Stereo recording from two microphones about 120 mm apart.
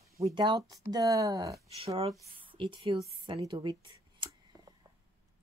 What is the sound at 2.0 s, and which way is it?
Speech, 45° right (ahead or behind).